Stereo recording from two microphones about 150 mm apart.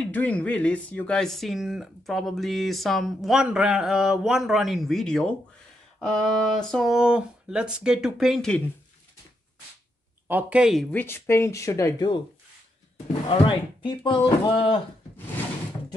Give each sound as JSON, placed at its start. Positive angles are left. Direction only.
{"t": 0.0, "sound": "speech", "side_deg": 10}
{"t": 10.2, "sound": "speech", "side_deg": -10}
{"t": 10.9, "sound": "speech", "side_deg": 15}
{"t": 13.3, "sound": "speech", "side_deg": 35}